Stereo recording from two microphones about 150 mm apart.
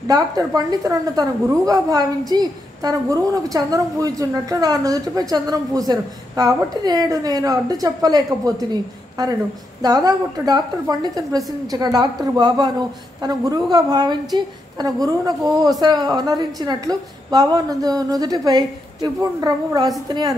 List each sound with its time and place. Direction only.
0.1 s a woman's voice: 25° right (ahead or behind)